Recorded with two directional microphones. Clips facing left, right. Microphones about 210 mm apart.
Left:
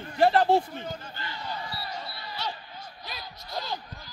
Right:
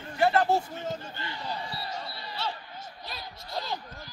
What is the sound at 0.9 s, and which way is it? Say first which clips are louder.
Basketball bounce: right 2 dB; 25° right (ahead or behind).